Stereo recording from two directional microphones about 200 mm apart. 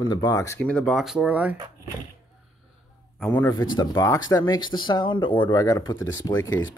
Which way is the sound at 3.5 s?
20° left (ahead or behind).